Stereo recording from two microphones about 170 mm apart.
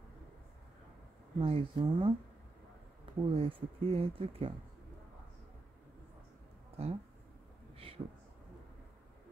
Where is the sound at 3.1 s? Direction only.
35° right (ahead or behind).